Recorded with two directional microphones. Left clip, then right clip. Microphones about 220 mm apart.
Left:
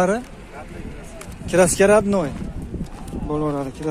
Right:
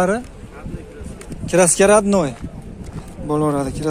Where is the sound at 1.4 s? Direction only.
15° right (ahead or behind).